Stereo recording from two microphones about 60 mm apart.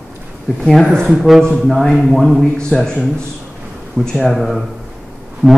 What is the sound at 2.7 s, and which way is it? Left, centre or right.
Speech, centre.